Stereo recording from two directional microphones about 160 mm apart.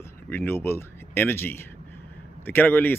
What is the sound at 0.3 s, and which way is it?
Speech, 15° left (ahead or behind).